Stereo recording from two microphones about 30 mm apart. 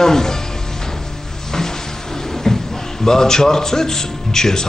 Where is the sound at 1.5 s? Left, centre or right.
Centre.